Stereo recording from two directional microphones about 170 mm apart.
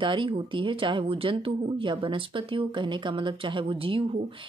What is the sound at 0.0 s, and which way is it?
Speech, 30° right (ahead or behind).